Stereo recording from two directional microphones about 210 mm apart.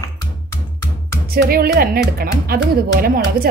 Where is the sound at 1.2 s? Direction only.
45° right (ahead or behind).